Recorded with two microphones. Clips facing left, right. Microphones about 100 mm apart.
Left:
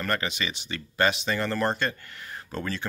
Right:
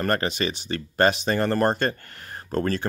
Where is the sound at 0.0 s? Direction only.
45° right (ahead or behind).